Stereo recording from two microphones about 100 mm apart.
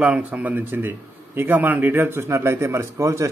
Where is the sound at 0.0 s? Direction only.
15° right (ahead or behind).